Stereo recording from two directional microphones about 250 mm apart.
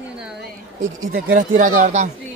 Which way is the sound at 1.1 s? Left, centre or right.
Right.